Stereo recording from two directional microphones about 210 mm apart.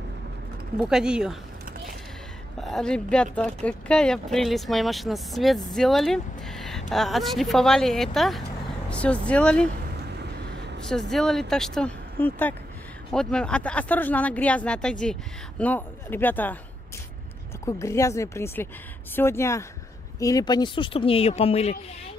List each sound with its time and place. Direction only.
0.8 s speech: 5° right (ahead or behind)
2.6 s speech: centre (ahead or behind)
9.9 s vehicle: 50° right (ahead or behind)
10.9 s speech: centre (ahead or behind)
17.6 s speech: 15° left (ahead or behind); by 22.1 s 30° left (ahead or behind)